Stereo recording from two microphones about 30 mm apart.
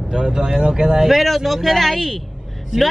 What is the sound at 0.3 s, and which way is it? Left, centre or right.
Speech, right.